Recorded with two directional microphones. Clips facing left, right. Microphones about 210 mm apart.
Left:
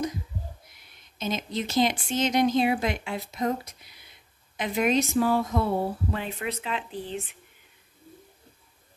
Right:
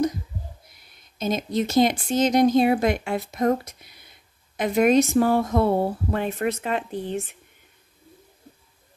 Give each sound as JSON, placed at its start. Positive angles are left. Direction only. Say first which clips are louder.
{"t": 1.2, "sound": "speech", "louder": "right 6 dB", "side_deg": -40}